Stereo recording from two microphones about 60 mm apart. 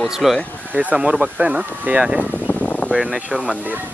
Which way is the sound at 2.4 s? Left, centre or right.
Left.